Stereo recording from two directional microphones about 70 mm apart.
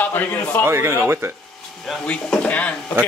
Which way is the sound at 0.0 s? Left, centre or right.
Left.